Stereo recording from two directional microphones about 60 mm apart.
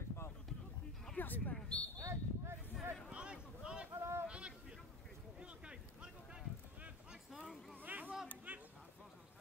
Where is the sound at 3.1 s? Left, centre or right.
Centre.